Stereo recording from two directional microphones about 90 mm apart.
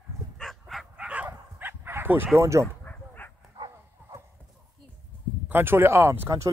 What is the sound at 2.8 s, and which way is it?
Dog, 20° left (ahead or behind).